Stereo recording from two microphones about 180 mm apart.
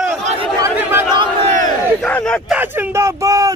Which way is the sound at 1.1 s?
25° right (ahead or behind).